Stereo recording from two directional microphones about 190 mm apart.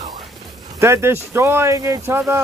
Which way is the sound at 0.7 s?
15° right (ahead or behind).